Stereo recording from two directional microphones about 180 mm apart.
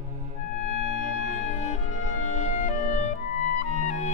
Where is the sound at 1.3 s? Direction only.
40° left (ahead or behind).